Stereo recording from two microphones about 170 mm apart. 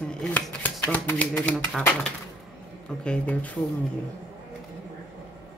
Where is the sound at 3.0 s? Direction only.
10° left (ahead or behind).